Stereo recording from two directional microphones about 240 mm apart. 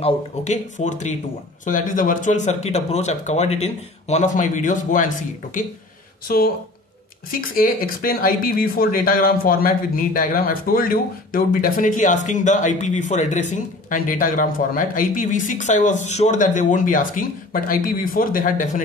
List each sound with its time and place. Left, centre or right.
0.0 s speech: left